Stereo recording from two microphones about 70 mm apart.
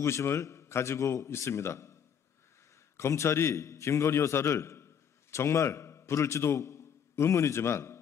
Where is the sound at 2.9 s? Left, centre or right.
Left.